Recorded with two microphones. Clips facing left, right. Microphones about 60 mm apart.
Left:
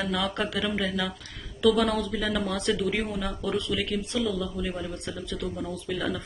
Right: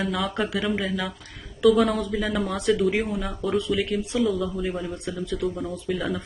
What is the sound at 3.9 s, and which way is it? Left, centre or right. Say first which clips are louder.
Speech: right 4 dB; right.